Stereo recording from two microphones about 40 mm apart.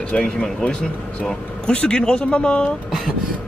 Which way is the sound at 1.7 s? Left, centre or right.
Left.